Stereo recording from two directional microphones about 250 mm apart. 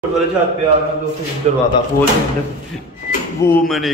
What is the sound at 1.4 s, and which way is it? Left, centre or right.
Speech, right.